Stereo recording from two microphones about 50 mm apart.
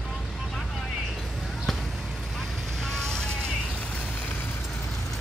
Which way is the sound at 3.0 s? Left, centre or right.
Centre.